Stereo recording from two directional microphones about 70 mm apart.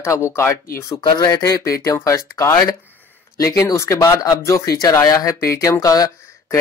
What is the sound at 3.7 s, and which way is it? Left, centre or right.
Speech, left.